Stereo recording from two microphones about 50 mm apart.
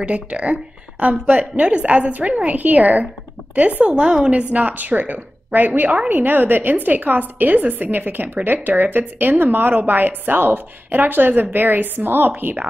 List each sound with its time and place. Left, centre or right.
0.0 s a woman's voice: right